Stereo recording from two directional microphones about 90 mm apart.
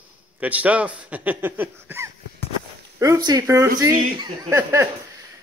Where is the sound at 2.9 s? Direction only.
40° right (ahead or behind).